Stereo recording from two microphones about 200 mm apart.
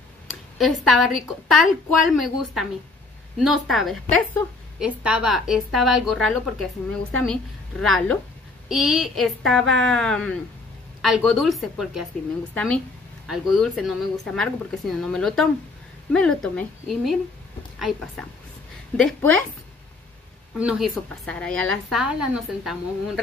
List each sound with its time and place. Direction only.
0.6 s a woman's voice: centre (ahead or behind)
20.5 s a woman's voice: 5° right (ahead or behind)